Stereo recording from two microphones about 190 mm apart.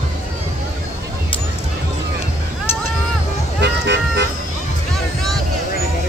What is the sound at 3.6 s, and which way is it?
Vehicle, 65° right (ahead or behind).